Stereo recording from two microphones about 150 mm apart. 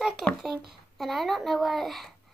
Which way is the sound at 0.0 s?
5° right (ahead or behind).